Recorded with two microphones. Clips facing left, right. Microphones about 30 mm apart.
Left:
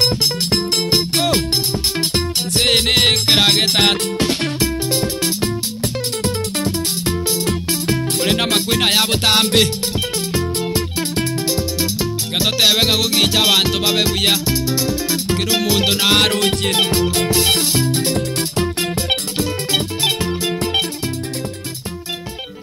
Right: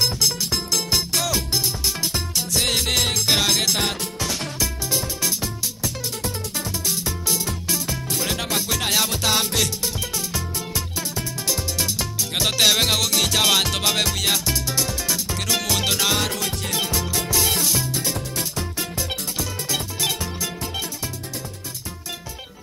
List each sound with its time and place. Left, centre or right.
0.0 s music: left
6.2 s music: left
11.4 s music: centre
14.1 s music: left
14.5 s music: centre
16.2 s music: left
19.7 s music: left